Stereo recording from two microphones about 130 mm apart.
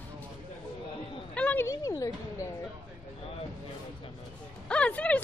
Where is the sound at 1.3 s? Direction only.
10° left (ahead or behind).